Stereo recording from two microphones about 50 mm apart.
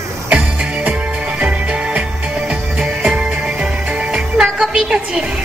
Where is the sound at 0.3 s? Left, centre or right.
Right.